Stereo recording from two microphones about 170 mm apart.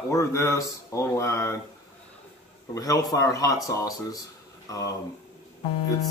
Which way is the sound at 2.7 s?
20° left (ahead or behind).